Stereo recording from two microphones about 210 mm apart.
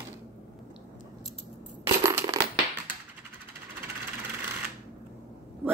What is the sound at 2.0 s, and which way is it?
Crushing, 15° right (ahead or behind).